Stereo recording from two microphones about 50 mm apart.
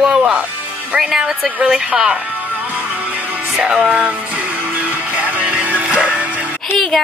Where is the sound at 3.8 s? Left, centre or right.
Right.